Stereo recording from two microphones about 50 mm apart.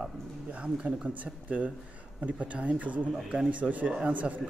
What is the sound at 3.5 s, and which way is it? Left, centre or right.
Speech, right.